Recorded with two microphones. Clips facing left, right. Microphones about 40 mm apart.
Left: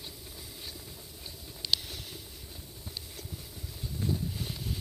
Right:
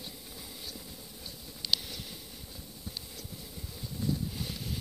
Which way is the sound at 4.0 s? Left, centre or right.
Left.